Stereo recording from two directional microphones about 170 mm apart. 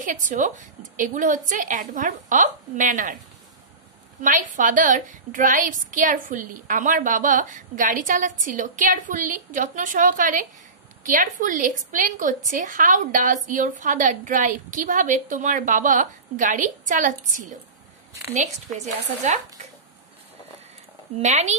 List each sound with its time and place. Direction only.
0.0 s a woman's voice: 50° right (ahead or behind)
4.2 s a woman's voice: 50° right (ahead or behind)
21.2 s a woman's voice: 40° right (ahead or behind)